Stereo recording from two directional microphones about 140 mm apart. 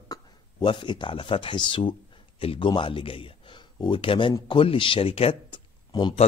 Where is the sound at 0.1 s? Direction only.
30° left (ahead or behind).